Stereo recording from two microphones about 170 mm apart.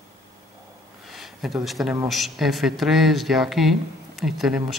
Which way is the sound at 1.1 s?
Centre (ahead or behind).